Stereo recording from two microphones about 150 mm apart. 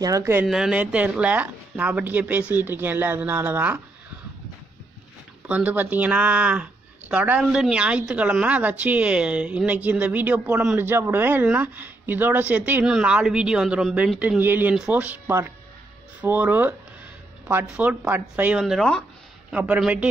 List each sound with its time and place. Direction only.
0.0 s speech: 20° right (ahead or behind)
0.5 s speech: 5° right (ahead or behind)
5.5 s speech: 10° right (ahead or behind)